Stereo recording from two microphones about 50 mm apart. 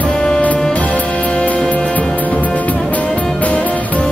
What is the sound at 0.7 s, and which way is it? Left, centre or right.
Music, left.